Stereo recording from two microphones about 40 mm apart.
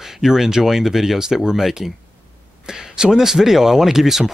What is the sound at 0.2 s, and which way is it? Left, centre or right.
Speech, centre.